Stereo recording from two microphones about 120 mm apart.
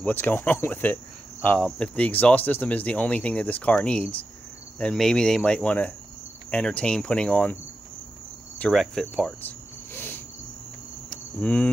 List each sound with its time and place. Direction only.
0.0 s speech: 15° left (ahead or behind)
8.5 s cricket: 5° left (ahead or behind)
9.9 s cricket: 15° left (ahead or behind)